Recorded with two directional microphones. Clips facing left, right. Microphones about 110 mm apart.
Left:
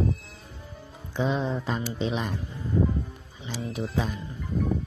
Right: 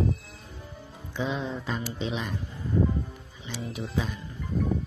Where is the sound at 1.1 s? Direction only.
40° left (ahead or behind).